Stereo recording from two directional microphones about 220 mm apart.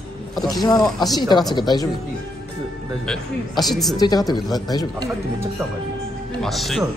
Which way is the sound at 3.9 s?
15° left (ahead or behind).